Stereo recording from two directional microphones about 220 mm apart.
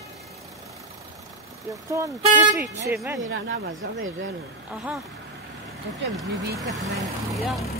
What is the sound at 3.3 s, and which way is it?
Speech, 55° right (ahead or behind).